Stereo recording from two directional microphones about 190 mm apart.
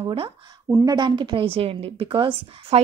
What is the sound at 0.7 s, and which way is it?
A woman's voice, 15° right (ahead or behind).